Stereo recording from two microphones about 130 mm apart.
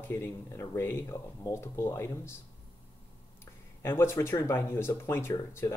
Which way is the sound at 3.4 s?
20° left (ahead or behind).